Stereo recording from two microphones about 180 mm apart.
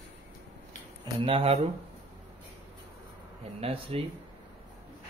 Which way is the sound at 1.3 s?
30° right (ahead or behind).